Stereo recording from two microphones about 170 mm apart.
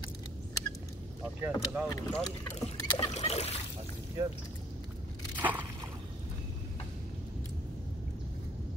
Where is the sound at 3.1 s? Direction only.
40° left (ahead or behind).